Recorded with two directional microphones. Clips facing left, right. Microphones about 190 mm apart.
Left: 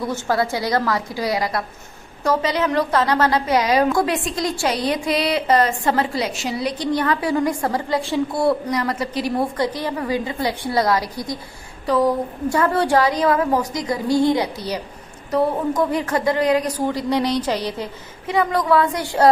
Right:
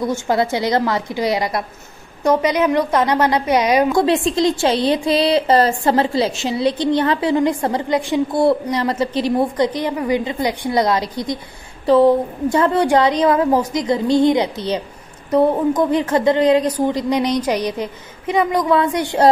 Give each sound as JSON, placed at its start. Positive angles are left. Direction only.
{"t": 0.1, "sound": "a woman's voice", "side_deg": -20}